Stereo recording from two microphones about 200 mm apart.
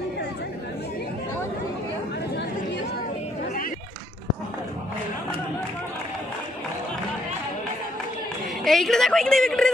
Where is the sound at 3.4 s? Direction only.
45° left (ahead or behind).